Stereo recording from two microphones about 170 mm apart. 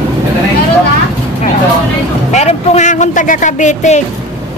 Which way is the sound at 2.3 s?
40° left (ahead or behind).